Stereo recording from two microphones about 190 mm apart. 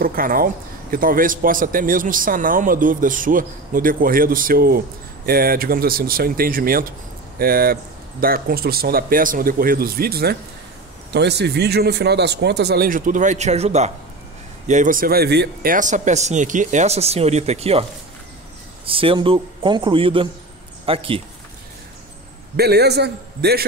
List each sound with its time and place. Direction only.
0.0 s speech: 50° right (ahead or behind); by 17.8 s 30° right (ahead or behind)
18.9 s speech: 30° right (ahead or behind)
22.6 s speech: 60° right (ahead or behind)